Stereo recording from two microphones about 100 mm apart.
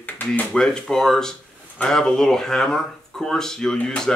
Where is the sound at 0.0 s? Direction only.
15° left (ahead or behind).